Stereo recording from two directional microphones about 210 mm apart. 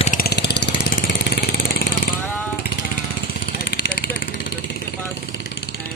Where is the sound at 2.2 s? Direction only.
10° left (ahead or behind).